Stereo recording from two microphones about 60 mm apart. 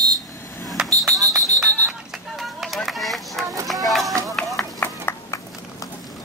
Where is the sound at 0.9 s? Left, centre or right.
Centre.